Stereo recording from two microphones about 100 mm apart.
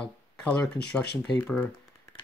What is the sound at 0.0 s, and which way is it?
Speech, 10° left (ahead or behind).